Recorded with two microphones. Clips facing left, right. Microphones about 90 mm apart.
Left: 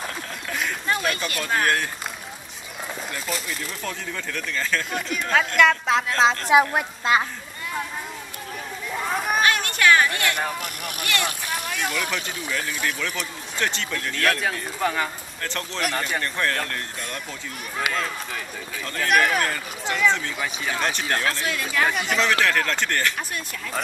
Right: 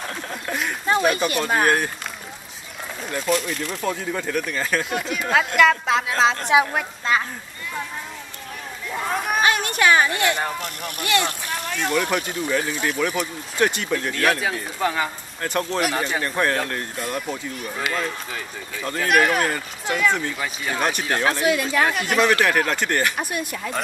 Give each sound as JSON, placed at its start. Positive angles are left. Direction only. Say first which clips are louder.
{"t": 0.8, "sound": "speech", "louder": "right 8 dB", "side_deg": -20}
{"t": 3.1, "sound": "speech", "louder": "right 11 dB", "side_deg": 0}
{"t": 3.8, "sound": "speech", "louder": "right 8 dB", "side_deg": -15}
{"t": 4.9, "sound": "speech", "louder": "right 1 dB", "side_deg": 0}
{"t": 8.9, "sound": "a sound", "louder": "right 1 dB", "side_deg": 0}
{"t": 9.4, "sound": "a sound", "louder": "right 2 dB", "side_deg": -20}
{"t": 10.6, "sound": "speech", "louder": "right 2 dB", "side_deg": 10}
{"t": 11.2, "sound": "vehicle", "louder": "right 1 dB", "side_deg": 5}
{"t": 12.1, "sound": "speech", "louder": "right 6 dB", "side_deg": -15}
{"t": 15.4, "sound": "speech", "louder": "right 5 dB", "side_deg": -15}
{"t": 17.9, "sound": "speech", "louder": "right 1 dB", "side_deg": -5}
{"t": 21.2, "sound": "speech", "louder": "right 6 dB", "side_deg": -15}
{"t": 21.8, "sound": "speech", "louder": "right 2 dB", "side_deg": 0}
{"t": 22.4, "sound": "speech", "louder": "right 2 dB", "side_deg": -15}